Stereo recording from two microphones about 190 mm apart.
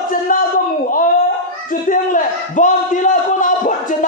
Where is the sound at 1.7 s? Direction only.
45° left (ahead or behind).